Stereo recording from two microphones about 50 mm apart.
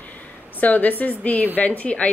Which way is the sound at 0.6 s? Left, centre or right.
Left.